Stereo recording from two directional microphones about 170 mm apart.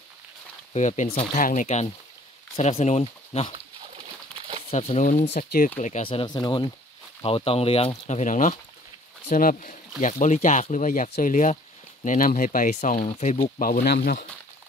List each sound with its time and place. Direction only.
0.7 s speech: 45° left (ahead or behind)
4.6 s speech: 40° left (ahead or behind)
5.4 s speech: 60° left (ahead or behind)
5.8 s speech: 45° left (ahead or behind)
6.0 s speech: 30° left (ahead or behind)
8.1 s speech: 45° left (ahead or behind); by 14.2 s 70° left (ahead or behind)